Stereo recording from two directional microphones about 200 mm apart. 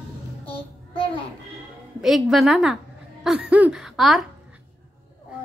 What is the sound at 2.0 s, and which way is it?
A woman's voice, centre (ahead or behind).